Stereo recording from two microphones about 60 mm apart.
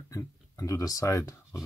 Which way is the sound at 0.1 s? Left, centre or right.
Left.